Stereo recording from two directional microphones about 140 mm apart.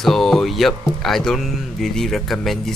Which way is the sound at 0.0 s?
Centre (ahead or behind).